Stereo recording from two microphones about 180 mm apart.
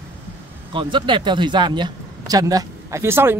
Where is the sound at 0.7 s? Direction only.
25° right (ahead or behind).